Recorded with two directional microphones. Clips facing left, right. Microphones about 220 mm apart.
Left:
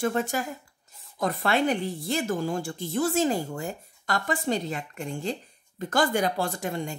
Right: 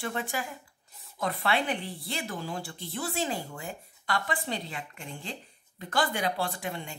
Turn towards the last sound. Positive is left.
turn(degrees=40)  # may be behind; listen again after turning